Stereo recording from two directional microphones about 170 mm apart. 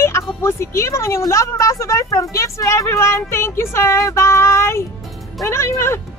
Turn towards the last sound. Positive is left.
turn(degrees=15)  # may be behind; listen again after turning